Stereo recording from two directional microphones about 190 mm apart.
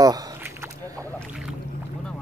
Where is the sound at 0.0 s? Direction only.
20° right (ahead or behind).